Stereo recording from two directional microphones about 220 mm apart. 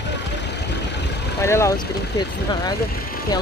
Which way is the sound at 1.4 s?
15° left (ahead or behind).